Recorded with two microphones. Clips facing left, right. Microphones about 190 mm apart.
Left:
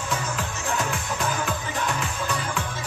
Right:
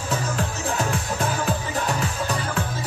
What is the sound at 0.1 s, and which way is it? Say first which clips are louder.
Music: right 4 dB; 35° right (ahead or behind).